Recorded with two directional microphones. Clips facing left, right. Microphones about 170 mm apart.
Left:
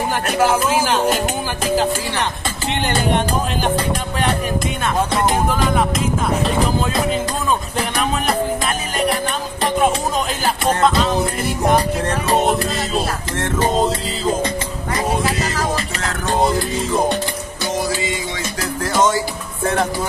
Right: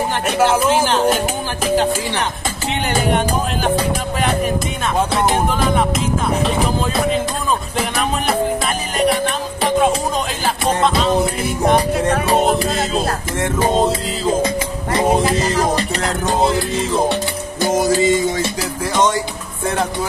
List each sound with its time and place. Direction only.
0.3 s music: 10° left (ahead or behind)
2.7 s music: 5° right (ahead or behind)
7.7 s music: 5° right (ahead or behind)
13.4 s music: 5° right (ahead or behind)
16.3 s music: centre (ahead or behind)
17.6 s music: 45° right (ahead or behind)
18.6 s music: centre (ahead or behind)
19.6 s speech: centre (ahead or behind)